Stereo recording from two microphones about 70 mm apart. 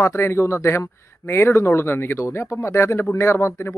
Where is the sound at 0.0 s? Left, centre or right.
Left.